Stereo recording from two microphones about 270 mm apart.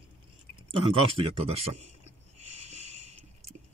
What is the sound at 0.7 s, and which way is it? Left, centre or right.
Speech, centre.